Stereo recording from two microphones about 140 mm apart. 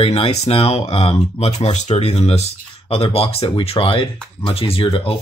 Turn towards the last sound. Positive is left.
turn(degrees=40)  # may be behind; listen again after turning